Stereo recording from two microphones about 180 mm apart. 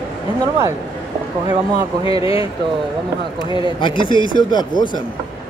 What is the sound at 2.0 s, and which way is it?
Speech, 30° left (ahead or behind).